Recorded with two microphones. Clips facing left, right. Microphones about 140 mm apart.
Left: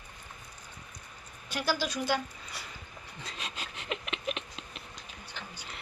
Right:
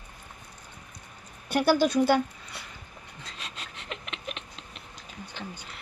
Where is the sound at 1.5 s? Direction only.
55° right (ahead or behind).